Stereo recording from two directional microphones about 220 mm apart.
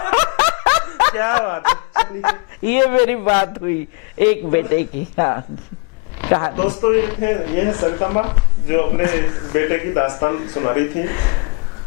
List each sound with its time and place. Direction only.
0.1 s snicker: 20° left (ahead or behind)
2.6 s speech: 15° left (ahead or behind)